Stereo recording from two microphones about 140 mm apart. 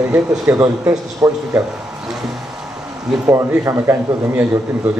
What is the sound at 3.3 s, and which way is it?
A man's voice, 20° right (ahead or behind).